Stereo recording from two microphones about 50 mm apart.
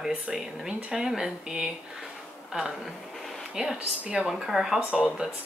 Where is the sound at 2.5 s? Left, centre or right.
Right.